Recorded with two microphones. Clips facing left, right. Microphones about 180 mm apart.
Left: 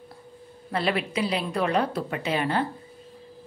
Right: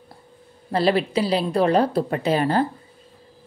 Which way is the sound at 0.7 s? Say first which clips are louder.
Right 6 dB; 35° right (ahead or behind).